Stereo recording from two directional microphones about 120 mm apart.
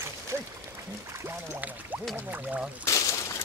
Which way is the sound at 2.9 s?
25° left (ahead or behind).